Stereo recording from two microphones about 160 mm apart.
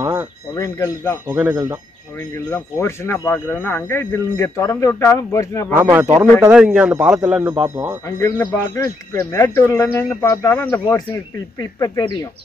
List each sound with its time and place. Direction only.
0.0 s a sound: 20° right (ahead or behind)
0.6 s speech: 20° left (ahead or behind)
1.2 s speech: 20° right (ahead or behind)
2.1 s speech: 15° left (ahead or behind)
5.8 s a man's voice: 15° right (ahead or behind)
8.0 s speech: 15° left (ahead or behind)